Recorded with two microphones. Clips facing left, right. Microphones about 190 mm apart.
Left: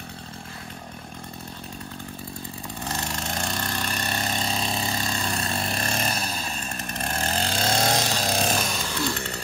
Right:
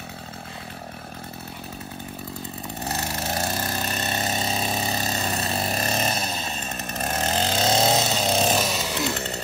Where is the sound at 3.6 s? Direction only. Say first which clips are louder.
Right 2 dB; 20° right (ahead or behind).